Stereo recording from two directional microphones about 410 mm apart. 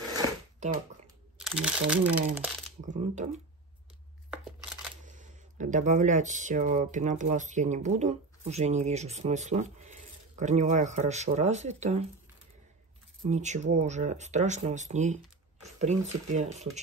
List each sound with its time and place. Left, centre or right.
0.1 s a sound: centre
1.4 s speech: centre
2.8 s speech: centre
5.0 s speech: centre
13.2 s speech: centre